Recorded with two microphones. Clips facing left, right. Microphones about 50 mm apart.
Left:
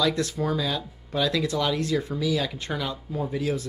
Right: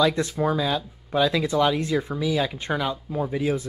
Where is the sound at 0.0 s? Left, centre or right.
Right.